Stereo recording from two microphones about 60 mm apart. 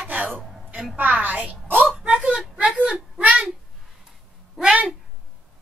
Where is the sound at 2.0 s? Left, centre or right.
Centre.